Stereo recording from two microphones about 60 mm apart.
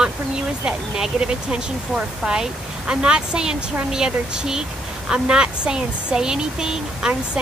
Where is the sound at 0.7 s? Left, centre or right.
Centre.